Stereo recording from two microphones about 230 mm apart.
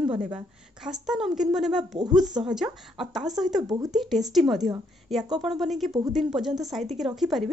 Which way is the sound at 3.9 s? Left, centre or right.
Centre.